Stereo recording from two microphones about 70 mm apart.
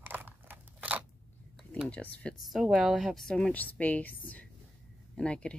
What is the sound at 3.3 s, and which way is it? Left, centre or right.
Speech, centre.